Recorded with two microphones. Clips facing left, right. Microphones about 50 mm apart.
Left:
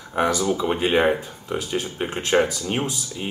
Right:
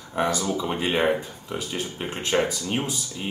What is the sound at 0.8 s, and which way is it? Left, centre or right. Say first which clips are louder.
Speech: left 3 dB; left.